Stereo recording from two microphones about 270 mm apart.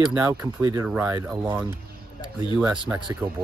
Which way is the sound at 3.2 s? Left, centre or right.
Centre.